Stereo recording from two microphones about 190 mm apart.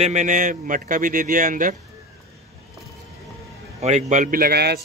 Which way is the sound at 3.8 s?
40° right (ahead or behind).